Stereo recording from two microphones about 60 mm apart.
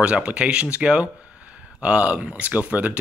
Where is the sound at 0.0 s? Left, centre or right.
Centre.